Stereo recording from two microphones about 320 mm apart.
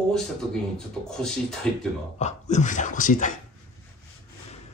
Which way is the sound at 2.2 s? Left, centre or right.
Left.